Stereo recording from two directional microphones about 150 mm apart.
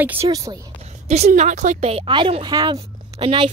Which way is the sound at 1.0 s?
45° right (ahead or behind).